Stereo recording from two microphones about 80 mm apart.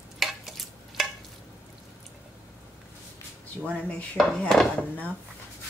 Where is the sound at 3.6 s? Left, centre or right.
Centre.